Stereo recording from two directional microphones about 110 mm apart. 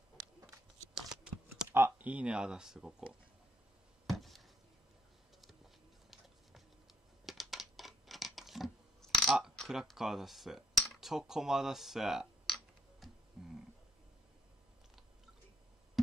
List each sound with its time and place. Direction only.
1.1 s typing: 5° right (ahead or behind)
1.7 s speech: 20° right (ahead or behind)
4.1 s a sound: centre (ahead or behind)
6.0 s music: centre (ahead or behind)
7.2 s scissors: centre (ahead or behind)
13.4 s a sound: 5° right (ahead or behind)